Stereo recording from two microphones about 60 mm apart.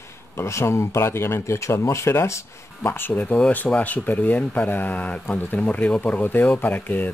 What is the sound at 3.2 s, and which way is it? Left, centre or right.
Speech, centre.